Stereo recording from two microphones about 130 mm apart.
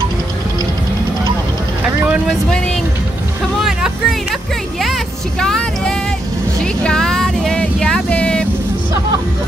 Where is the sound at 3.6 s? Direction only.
Centre (ahead or behind).